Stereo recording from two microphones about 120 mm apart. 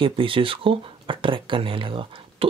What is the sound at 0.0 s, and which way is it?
Speech, 50° right (ahead or behind).